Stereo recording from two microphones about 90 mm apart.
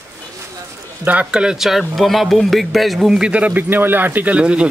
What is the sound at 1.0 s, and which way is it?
Speech, 15° right (ahead or behind).